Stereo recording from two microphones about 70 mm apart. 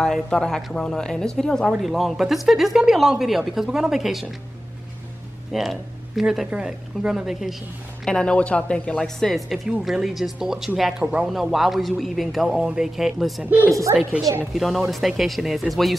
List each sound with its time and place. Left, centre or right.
0.0 s speech: centre
5.5 s speech: centre
8.0 s speech: centre
13.4 s speech: right
14.4 s speech: centre